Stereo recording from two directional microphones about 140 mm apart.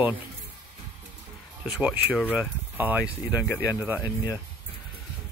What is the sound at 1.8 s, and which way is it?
Speech, 10° right (ahead or behind).